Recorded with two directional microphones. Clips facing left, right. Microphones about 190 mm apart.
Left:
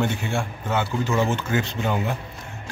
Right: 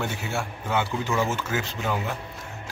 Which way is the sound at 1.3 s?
5° right (ahead or behind).